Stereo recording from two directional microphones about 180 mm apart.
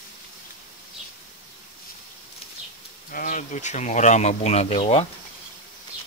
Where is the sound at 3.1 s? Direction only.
45° left (ahead or behind).